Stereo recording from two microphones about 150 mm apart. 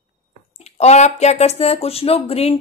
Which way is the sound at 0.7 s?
50° left (ahead or behind).